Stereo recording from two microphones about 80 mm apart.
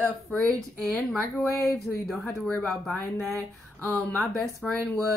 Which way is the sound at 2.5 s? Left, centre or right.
Centre.